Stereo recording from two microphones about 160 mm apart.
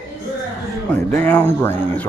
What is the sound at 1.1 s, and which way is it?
Speech, 10° left (ahead or behind).